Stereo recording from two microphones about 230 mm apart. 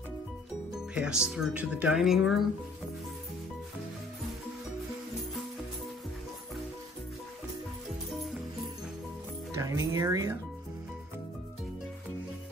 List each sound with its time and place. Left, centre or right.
0.9 s speech: centre
9.6 s speech: centre